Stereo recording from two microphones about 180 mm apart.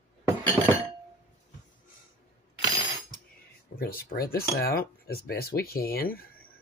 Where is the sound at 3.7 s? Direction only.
55° left (ahead or behind).